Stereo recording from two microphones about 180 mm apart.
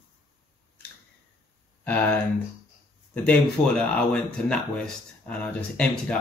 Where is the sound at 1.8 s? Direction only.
10° left (ahead or behind).